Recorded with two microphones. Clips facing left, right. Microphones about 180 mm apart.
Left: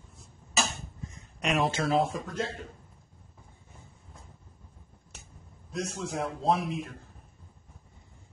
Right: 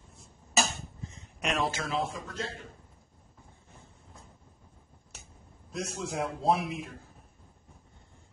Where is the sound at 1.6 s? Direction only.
25° left (ahead or behind).